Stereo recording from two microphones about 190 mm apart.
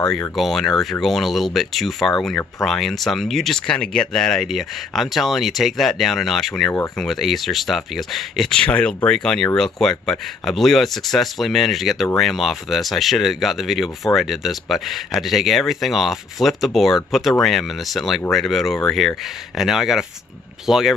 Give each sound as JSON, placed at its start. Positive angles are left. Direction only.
{"t": 0.1, "sound": "speech", "side_deg": 0}